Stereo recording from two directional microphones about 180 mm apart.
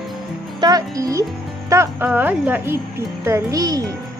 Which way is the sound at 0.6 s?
20° right (ahead or behind).